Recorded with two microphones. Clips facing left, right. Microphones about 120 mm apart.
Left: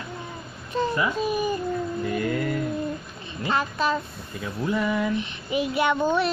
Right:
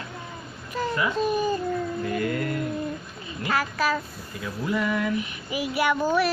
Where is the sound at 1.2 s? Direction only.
10° left (ahead or behind).